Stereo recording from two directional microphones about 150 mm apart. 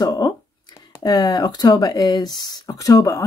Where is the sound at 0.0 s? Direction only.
25° left (ahead or behind).